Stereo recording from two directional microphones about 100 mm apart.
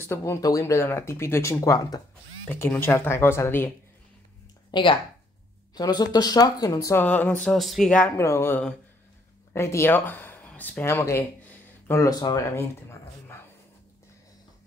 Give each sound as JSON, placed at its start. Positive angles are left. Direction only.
{"t": 0.0, "sound": "speech", "side_deg": 25}
{"t": 2.4, "sound": "speech", "side_deg": 20}
{"t": 4.6, "sound": "speech", "side_deg": 50}
{"t": 7.0, "sound": "speech", "side_deg": 15}
{"t": 8.2, "sound": "speech", "side_deg": 30}
{"t": 12.5, "sound": "a sound", "side_deg": 25}